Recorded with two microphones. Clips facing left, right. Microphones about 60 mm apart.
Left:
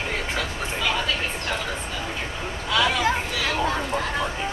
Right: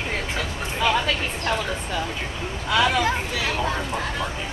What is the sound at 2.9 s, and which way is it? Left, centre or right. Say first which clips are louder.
Chatter: even; centre.